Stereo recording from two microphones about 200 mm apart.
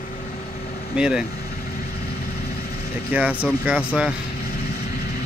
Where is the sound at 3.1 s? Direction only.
5° right (ahead or behind).